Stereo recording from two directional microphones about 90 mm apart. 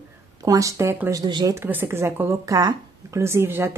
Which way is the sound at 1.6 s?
25° right (ahead or behind).